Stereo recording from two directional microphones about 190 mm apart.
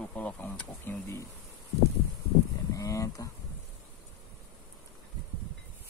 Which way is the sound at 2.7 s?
15° left (ahead or behind).